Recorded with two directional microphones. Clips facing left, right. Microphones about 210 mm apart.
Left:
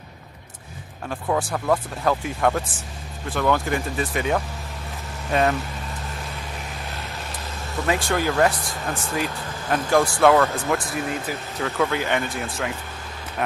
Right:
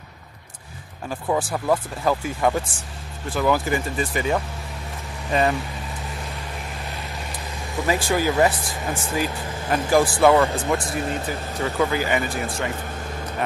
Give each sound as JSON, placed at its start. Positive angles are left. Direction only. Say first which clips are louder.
{"t": 1.0, "sound": "speech", "louder": "right 1 dB", "side_deg": -5}
{"t": 7.7, "sound": "speech", "louder": "right 1 dB", "side_deg": 0}
{"t": 10.8, "sound": "speech", "louder": "right 1 dB", "side_deg": -30}
{"t": 11.2, "sound": "speech", "louder": "right 1 dB", "side_deg": 0}